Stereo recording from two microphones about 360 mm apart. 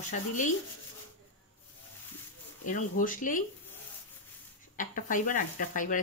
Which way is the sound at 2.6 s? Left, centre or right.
Left.